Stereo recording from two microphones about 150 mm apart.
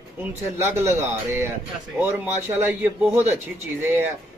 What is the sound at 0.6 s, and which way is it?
Speech, 20° right (ahead or behind).